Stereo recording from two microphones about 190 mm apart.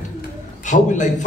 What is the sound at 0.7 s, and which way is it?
Speech, 40° left (ahead or behind).